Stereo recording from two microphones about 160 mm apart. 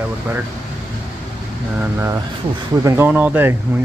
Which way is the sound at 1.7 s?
15° right (ahead or behind).